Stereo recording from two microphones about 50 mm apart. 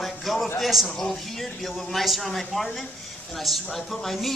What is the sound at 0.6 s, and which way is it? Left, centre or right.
Speech, centre.